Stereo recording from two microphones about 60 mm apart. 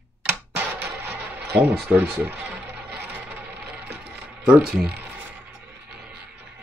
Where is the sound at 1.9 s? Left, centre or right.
Right.